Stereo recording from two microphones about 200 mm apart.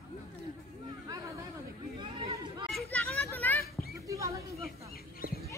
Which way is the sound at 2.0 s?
25° right (ahead or behind).